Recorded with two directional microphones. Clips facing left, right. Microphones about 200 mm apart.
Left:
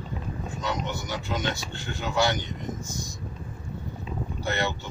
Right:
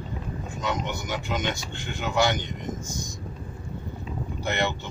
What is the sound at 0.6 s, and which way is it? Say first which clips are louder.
Speech: right 2 dB; 20° right (ahead or behind).